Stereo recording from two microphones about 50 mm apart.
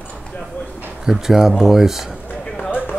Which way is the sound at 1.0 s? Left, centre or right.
Centre.